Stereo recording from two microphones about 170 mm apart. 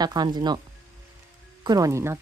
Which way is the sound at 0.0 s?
25° right (ahead or behind).